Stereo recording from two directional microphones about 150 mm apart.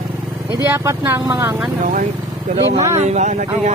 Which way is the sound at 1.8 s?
60° right (ahead or behind).